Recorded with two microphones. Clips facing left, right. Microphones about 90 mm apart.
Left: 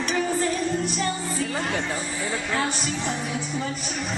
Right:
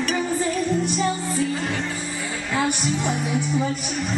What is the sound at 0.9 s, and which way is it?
Music, centre (ahead or behind).